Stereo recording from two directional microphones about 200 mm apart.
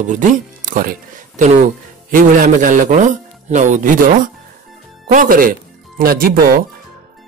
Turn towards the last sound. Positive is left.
turn(degrees=-45)  # may be behind; listen again after turning